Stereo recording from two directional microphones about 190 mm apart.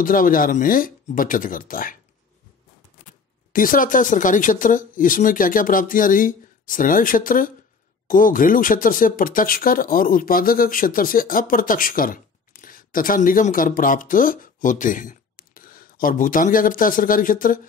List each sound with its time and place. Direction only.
0.0 s speech: 45° left (ahead or behind)
3.5 s speech: 45° left (ahead or behind)